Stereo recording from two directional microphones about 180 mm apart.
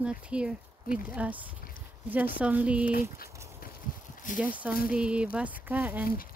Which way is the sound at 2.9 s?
55° left (ahead or behind).